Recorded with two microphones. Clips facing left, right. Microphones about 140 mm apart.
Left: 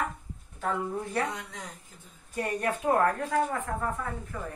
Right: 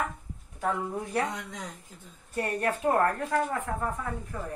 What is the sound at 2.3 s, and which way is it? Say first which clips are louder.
A woman's voice: right 1 dB; 5° right (ahead or behind).